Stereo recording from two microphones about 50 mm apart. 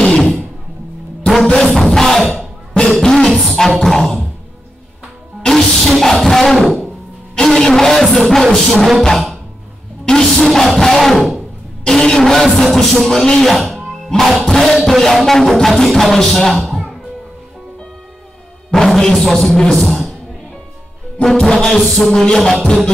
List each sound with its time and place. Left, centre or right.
0.0 s music: centre
1.6 s music: centre
2.7 s beatboxing: centre
5.4 s music: centre
7.4 s a sound: centre
8.2 s music: centre
10.1 s music: centre
10.4 s a sound: centre
11.8 s speech: centre
12.2 s music: centre
13.5 s speech: centre
14.9 s music: centre
18.7 s a man's voice: centre
21.2 s music: centre